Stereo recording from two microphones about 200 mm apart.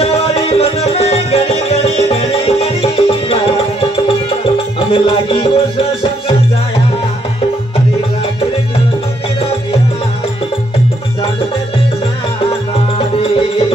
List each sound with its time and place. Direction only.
0.0 s music: 30° left (ahead or behind)